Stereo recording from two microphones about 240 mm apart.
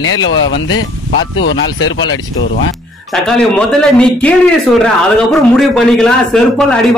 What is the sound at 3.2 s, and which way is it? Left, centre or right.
A man's voice, centre.